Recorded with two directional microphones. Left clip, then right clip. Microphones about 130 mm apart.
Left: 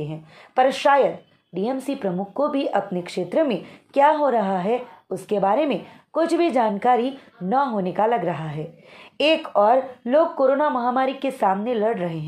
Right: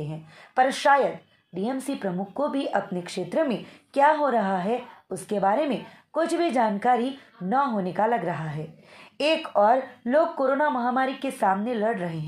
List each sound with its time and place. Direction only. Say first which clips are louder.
0.0 s a woman's voice: left 4 dB; 30° left (ahead or behind)